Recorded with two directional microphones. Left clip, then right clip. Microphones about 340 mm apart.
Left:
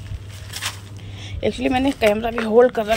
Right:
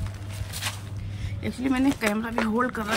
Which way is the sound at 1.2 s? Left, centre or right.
Centre.